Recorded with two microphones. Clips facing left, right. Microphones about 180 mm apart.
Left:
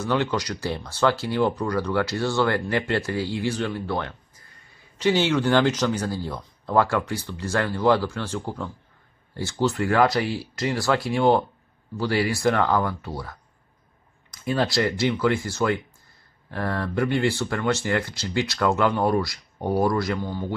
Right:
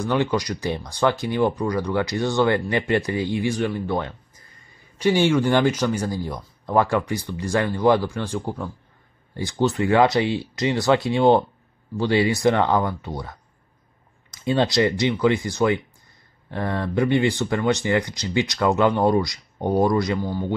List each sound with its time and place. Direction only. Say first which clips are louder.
0.0 s speech: right 2 dB; 15° right (ahead or behind)